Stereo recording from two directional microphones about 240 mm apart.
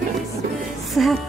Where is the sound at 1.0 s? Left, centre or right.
Centre.